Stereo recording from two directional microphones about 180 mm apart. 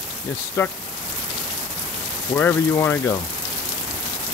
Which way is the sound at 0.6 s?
15° left (ahead or behind).